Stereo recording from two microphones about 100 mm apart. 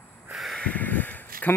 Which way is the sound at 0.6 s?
15° left (ahead or behind).